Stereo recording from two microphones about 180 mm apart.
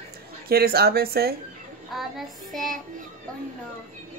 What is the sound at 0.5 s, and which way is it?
Speech, 60° right (ahead or behind).